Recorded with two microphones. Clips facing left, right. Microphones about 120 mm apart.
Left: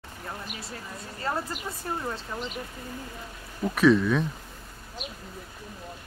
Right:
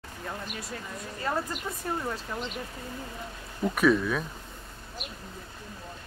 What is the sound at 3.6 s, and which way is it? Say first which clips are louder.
Speech: left 3 dB; centre (ahead or behind).